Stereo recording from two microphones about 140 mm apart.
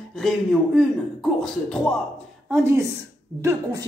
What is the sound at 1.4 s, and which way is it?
Speech, 5° left (ahead or behind).